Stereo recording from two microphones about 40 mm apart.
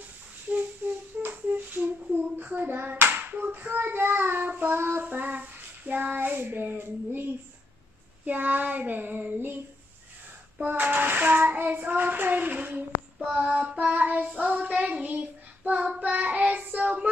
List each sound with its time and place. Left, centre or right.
1.2 s child singing: right
5.0 s child singing: right
8.3 s child singing: right
10.7 s child singing: right
13.3 s child singing: right